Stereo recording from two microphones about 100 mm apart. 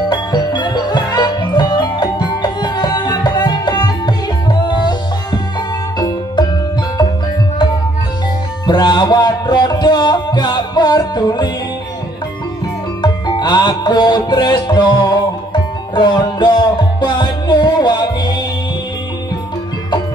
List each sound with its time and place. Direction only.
0.1 s music: 50° left (ahead or behind)
8.6 s music: 50° left (ahead or behind)
13.0 s music: 45° left (ahead or behind)